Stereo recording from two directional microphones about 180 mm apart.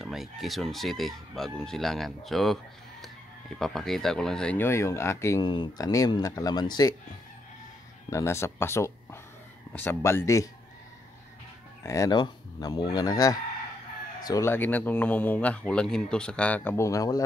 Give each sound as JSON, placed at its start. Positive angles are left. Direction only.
{"t": 0.0, "sound": "speech", "side_deg": 0}
{"t": 8.1, "sound": "speech", "side_deg": 15}
{"t": 11.8, "sound": "fowl", "side_deg": 20}
{"t": 14.2, "sound": "speech", "side_deg": 15}